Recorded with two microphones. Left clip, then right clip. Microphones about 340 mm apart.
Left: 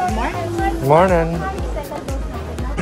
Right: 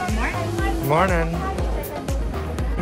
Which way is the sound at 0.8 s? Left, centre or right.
Centre.